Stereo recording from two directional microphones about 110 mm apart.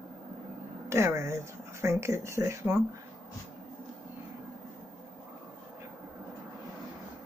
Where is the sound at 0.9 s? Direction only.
25° right (ahead or behind).